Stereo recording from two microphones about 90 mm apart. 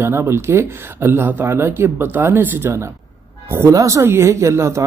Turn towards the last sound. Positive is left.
turn(degrees=-35)  # may be behind; listen again after turning